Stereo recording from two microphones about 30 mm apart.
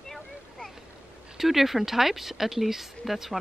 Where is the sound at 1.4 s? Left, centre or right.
Centre.